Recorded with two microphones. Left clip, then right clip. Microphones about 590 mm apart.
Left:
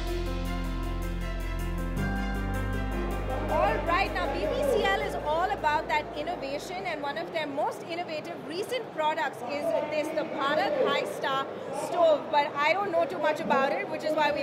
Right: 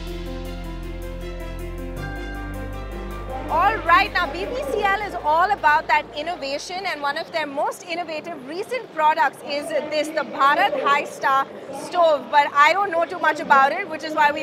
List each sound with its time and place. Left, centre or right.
3.6 s a woman's voice: right